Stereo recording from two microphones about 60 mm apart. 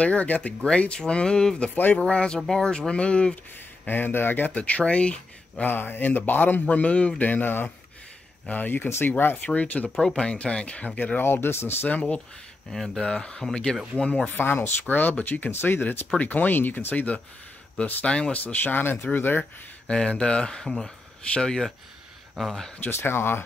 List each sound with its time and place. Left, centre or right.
0.0 s speech: left
3.8 s speech: left
5.7 s speech: left
9.5 s speech: left
11.1 s speech: left
11.9 s speech: left
12.7 s speech: centre
18.4 s speech: left
19.9 s speech: centre
22.9 s speech: left